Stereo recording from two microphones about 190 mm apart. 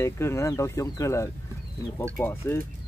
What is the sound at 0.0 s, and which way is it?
Speech, 15° left (ahead or behind).